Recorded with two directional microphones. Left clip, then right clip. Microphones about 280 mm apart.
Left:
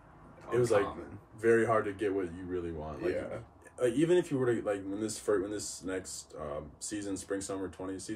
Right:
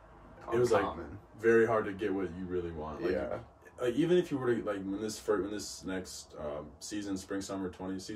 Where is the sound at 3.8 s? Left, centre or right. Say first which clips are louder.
Left 1 dB; centre.